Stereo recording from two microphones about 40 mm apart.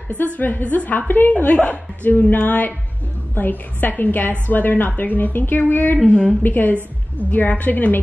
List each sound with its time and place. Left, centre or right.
0.1 s a woman's voice: left
1.4 s a woman's voice: left
6.0 s a woman's voice: left
6.4 s a woman's voice: left